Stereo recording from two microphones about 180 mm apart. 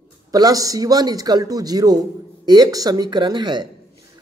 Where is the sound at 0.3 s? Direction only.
20° right (ahead or behind).